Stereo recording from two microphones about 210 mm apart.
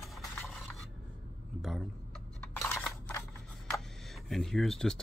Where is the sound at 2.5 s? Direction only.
10° left (ahead or behind).